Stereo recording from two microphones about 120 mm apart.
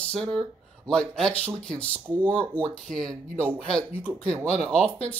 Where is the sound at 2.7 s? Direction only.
5° left (ahead or behind).